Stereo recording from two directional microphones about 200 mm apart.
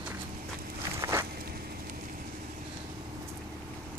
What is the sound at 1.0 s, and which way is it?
Walk, 15° right (ahead or behind).